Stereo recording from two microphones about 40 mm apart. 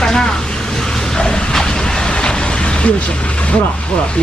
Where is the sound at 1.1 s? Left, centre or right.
Centre.